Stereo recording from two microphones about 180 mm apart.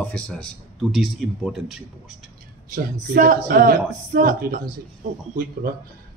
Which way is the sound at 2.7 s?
50° right (ahead or behind).